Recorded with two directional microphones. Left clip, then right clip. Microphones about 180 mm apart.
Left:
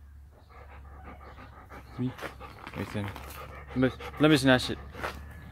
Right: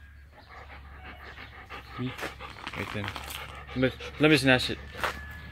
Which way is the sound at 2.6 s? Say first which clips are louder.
Right 4 dB; 5° left (ahead or behind).